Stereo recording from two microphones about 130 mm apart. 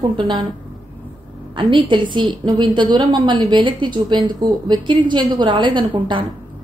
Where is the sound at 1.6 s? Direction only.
40° right (ahead or behind).